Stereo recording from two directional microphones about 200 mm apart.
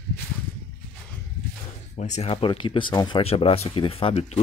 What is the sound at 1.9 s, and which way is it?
Speech, 35° left (ahead or behind).